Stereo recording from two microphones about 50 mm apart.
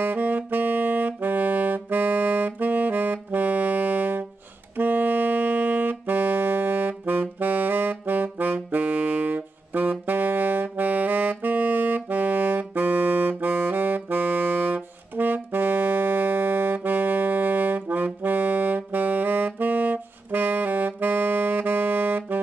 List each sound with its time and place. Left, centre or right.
0.0 s saxophone: right